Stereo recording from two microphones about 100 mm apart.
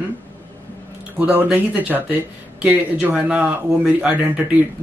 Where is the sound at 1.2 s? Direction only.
15° right (ahead or behind).